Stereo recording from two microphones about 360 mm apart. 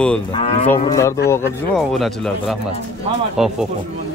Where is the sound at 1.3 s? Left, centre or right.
Centre.